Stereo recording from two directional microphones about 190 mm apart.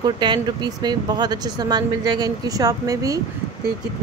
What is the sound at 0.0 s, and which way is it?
A woman's voice, 25° right (ahead or behind).